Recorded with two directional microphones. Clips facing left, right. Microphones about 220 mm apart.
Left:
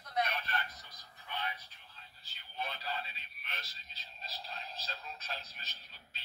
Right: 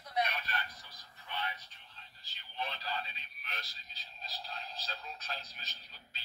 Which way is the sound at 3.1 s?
Centre (ahead or behind).